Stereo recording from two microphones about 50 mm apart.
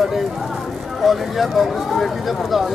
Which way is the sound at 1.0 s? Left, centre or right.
Centre.